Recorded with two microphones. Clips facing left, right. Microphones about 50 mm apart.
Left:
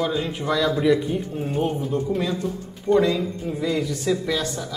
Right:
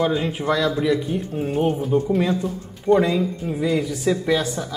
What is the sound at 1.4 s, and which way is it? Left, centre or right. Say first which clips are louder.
Speech: right 5 dB; centre.